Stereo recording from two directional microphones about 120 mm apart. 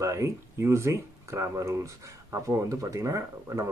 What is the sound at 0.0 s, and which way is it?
Speech, 25° right (ahead or behind).